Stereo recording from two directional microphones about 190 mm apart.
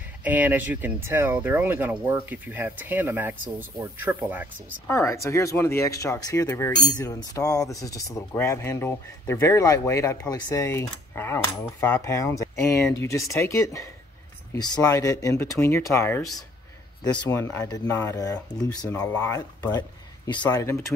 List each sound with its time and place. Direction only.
0.2 s speech: 10° right (ahead or behind)
4.8 s speech: 15° left (ahead or behind)